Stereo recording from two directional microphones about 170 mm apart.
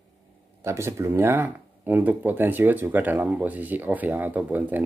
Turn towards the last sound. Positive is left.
turn(degrees=-10)  # may be behind; listen again after turning